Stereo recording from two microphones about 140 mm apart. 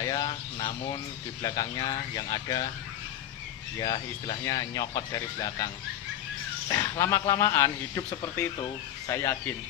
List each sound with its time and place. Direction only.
0.1 s a sound: 25° left (ahead or behind)
1.4 s speech: 25° left (ahead or behind)
3.8 s speech: 30° left (ahead or behind)
6.8 s speech: 20° left (ahead or behind)